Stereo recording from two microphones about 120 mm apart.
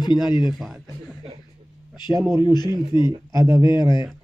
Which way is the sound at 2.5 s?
35° left (ahead or behind).